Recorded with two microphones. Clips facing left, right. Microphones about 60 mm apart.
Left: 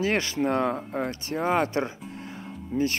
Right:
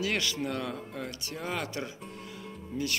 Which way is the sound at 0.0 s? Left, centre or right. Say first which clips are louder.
Left 6 dB; left.